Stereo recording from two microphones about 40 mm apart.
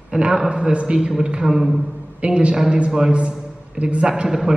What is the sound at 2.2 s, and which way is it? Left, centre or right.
A man's voice, right.